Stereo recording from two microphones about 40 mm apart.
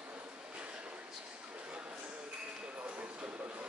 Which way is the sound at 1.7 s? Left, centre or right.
Right.